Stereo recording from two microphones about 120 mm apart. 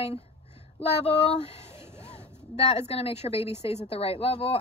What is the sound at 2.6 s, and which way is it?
A woman's voice, 55° left (ahead or behind).